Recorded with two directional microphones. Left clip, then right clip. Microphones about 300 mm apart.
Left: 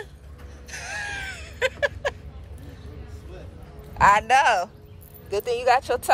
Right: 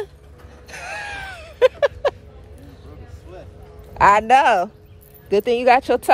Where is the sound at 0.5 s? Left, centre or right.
Centre.